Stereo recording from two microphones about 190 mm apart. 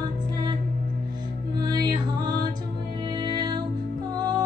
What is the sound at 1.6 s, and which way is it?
Music, 20° right (ahead or behind).